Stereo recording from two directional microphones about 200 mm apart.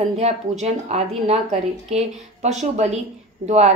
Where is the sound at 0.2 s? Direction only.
35° right (ahead or behind).